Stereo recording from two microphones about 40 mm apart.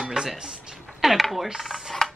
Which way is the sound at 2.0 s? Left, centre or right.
Centre.